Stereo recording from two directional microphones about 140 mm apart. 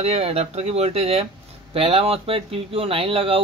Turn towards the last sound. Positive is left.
turn(degrees=-40)  # may be behind; listen again after turning